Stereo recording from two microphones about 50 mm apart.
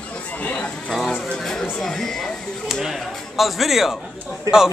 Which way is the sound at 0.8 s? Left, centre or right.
Centre.